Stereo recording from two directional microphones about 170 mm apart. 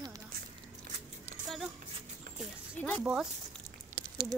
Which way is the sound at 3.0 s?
5° right (ahead or behind).